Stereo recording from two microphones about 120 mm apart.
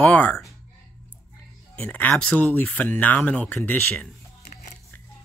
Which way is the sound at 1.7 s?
10° left (ahead or behind).